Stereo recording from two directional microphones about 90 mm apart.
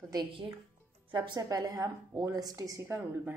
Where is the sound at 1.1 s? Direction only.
50° right (ahead or behind).